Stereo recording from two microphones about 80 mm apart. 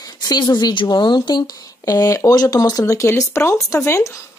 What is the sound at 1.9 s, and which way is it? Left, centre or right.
Speech, left.